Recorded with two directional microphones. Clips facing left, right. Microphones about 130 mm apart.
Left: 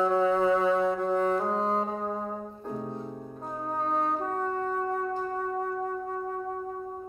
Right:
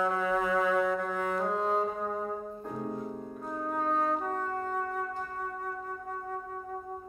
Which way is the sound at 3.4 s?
30° left (ahead or behind).